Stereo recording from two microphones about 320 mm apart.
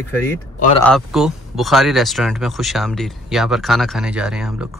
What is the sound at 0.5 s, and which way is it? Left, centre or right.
Speech, left.